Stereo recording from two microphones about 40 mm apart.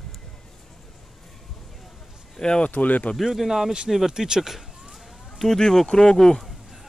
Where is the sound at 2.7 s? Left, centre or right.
Left.